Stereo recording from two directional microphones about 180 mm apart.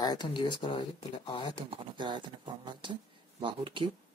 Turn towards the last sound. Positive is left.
turn(degrees=-25)  # may be behind; listen again after turning